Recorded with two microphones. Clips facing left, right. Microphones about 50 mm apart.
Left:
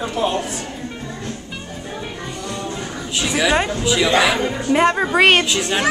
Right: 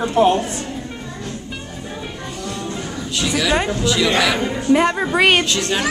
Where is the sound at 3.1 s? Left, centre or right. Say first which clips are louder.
Left 1 dB; centre.